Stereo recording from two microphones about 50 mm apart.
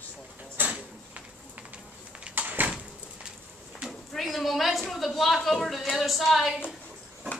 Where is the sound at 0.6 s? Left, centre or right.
Right.